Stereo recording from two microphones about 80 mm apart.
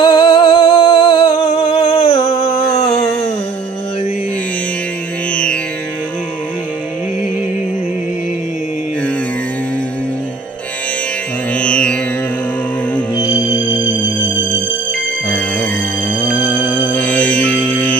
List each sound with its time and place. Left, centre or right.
0.0 s music: left
5.3 s music: centre
11.5 s music: centre
13.1 s music: left
15.2 s music: centre
16.4 s music: left
16.9 s music: centre